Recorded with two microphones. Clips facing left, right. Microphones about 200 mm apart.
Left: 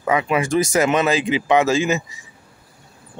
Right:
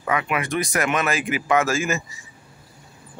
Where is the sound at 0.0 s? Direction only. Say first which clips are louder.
Left 5 dB; 25° left (ahead or behind).